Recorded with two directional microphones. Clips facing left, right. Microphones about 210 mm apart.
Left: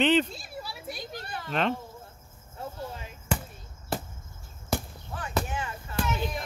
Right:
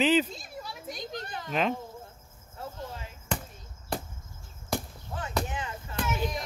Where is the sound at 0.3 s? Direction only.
10° left (ahead or behind).